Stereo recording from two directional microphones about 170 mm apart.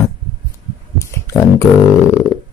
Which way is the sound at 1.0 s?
15° left (ahead or behind).